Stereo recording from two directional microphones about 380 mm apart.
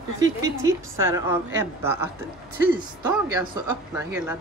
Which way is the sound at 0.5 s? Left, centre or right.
Centre.